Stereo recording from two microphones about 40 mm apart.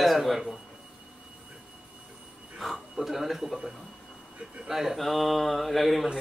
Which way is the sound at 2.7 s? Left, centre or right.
Centre.